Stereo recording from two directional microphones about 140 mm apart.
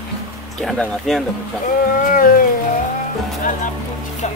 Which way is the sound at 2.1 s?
85° left.